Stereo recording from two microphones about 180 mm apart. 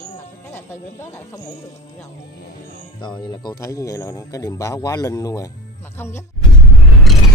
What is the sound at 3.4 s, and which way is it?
Speech, 20° left (ahead or behind).